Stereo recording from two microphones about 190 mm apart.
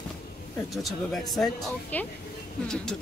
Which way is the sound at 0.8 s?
Centre (ahead or behind).